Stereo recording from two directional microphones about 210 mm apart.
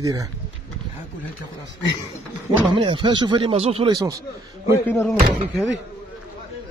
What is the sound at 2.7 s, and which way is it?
Speech, 25° right (ahead or behind).